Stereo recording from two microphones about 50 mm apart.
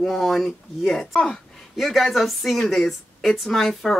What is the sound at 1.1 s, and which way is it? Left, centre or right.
Speech, left.